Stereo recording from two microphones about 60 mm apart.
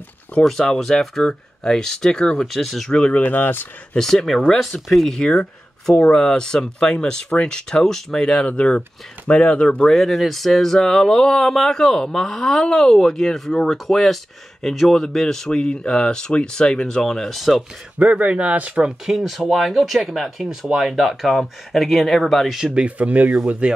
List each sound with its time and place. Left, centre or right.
0.5 s speech: centre
2.9 s speech: centre
3.2 s speech: left
3.9 s speech: centre
9.8 s speech: centre
17.9 s speech: right
19.1 s speech: centre
22.7 s speech: right